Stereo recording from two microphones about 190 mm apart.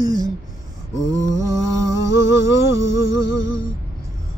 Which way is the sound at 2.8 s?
90° left.